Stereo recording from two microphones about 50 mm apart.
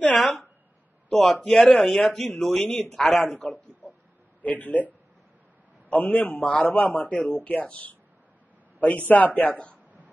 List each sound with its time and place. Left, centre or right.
1.1 s a man's voice: centre
1.7 s speech: centre
2.0 s speech: centre
3.3 s a man's voice: left